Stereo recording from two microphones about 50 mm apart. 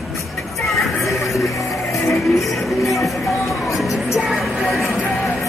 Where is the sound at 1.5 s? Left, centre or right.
Left.